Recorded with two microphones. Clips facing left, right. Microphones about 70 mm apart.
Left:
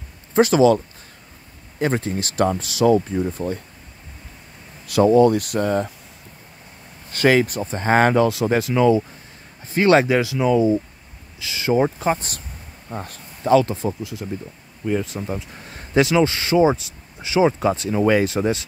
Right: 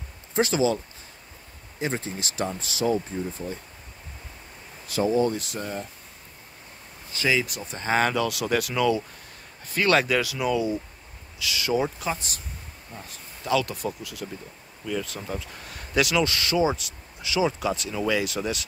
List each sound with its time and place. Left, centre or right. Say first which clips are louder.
0.4 s speech: left 8 dB; left
1.8 s speech: left 8 dB; left
4.8 s speech: left 9 dB; left
7.1 s speech: left 8 dB; left
11.7 s speech: left 8 dB; left
12.9 s speech: left 11 dB; left
13.4 s speech: left 9 dB; left